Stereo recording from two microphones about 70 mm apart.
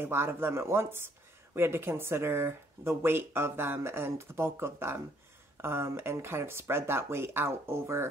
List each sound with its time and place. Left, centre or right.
0.0 s speech: right